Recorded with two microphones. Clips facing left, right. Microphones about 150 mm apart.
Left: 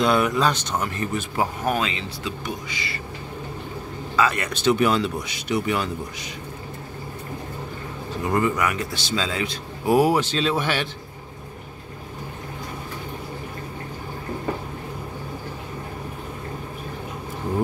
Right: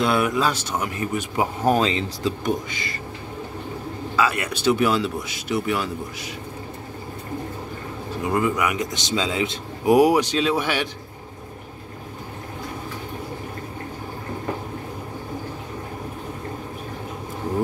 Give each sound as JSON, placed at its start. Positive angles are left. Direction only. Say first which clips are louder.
{"t": 0.0, "sound": "speech", "louder": "left 1 dB", "side_deg": -5}
{"t": 1.6, "sound": "speech", "louder": "right 5 dB", "side_deg": -30}
{"t": 4.2, "sound": "speech", "louder": "even", "side_deg": -10}
{"t": 8.3, "sound": "speech", "louder": "even", "side_deg": -5}